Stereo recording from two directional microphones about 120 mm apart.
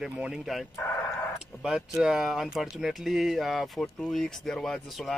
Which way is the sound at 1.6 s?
5° right (ahead or behind).